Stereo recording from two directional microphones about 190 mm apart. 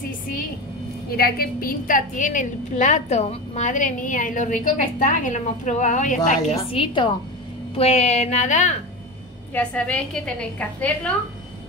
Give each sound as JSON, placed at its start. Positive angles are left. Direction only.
{"t": 1.1, "sound": "a woman's voice", "side_deg": 55}
{"t": 6.5, "sound": "a woman's voice", "side_deg": 30}
{"t": 9.5, "sound": "a woman's voice", "side_deg": 5}